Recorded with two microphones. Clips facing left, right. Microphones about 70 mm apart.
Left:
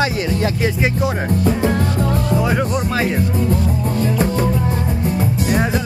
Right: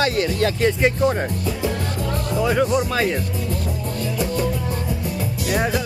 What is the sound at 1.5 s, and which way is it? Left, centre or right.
Music, left.